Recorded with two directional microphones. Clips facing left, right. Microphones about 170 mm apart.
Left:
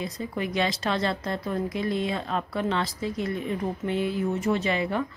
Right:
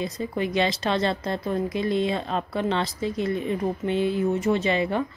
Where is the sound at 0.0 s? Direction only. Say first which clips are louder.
Right 3 dB; 25° right (ahead or behind).